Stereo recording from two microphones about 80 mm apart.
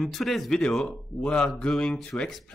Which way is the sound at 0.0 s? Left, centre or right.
Centre.